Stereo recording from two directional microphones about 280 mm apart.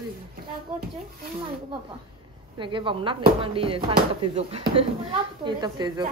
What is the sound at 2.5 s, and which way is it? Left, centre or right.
Speech, centre.